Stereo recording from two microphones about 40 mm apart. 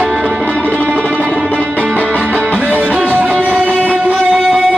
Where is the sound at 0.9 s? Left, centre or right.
Right.